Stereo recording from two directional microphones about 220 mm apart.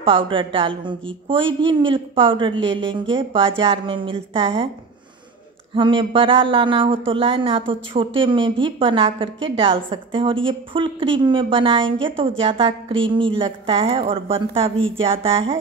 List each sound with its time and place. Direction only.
0.0 s a woman's voice: 25° right (ahead or behind)
2.6 s speech: 55° right (ahead or behind)
2.9 s a woman's voice: 25° right (ahead or behind)
5.8 s a woman's voice: 25° right (ahead or behind)